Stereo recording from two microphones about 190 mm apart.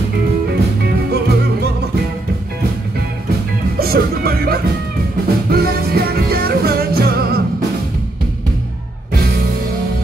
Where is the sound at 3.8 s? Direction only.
55° right (ahead or behind).